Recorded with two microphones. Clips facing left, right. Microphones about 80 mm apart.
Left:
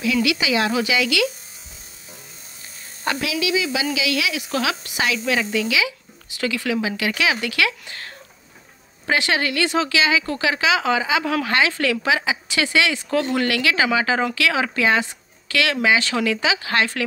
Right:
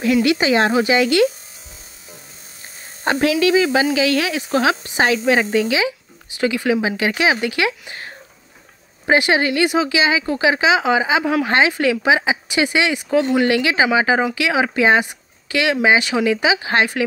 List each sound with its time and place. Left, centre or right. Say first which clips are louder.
0.0 s a woman's voice: right 5 dB; right
3.0 s a woman's voice: right 7 dB; right